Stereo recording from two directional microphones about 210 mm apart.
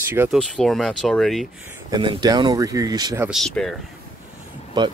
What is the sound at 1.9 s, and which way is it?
Speech, 20° right (ahead or behind).